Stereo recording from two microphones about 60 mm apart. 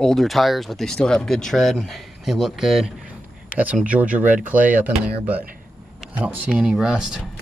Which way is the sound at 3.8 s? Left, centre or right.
Right.